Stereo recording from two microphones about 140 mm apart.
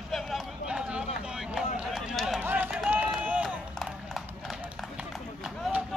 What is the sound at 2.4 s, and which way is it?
Run, 15° right (ahead or behind).